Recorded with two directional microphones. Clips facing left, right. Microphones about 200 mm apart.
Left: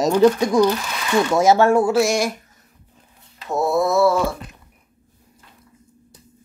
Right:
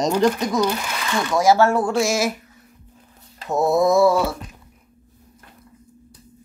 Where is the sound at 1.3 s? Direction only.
25° left (ahead or behind); by 2.3 s centre (ahead or behind).